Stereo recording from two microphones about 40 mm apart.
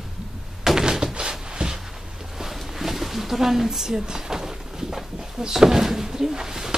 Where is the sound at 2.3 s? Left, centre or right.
Centre.